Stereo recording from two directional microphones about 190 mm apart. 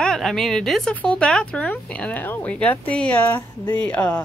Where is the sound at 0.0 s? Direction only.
Centre (ahead or behind).